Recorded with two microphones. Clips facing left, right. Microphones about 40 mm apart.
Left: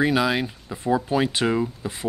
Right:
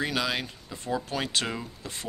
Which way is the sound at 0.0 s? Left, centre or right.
Centre.